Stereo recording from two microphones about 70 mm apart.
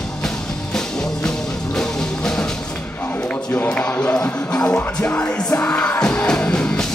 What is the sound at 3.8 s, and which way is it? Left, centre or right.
Music, left.